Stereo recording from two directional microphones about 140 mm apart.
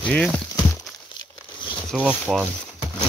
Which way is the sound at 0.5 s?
25° left (ahead or behind).